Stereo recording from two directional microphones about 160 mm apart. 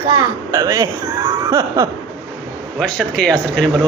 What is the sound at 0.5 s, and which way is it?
Speech, 20° right (ahead or behind).